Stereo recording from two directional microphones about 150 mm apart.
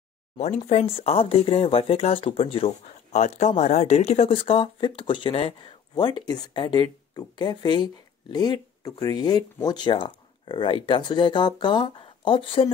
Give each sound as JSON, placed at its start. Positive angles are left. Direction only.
{"t": 0.4, "sound": "speech", "side_deg": 50}
{"t": 3.2, "sound": "speech", "side_deg": 50}